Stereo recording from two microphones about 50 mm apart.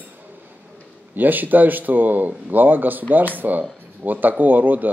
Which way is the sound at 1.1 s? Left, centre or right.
Right.